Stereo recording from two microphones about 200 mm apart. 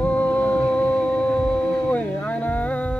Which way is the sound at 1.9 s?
5° left (ahead or behind).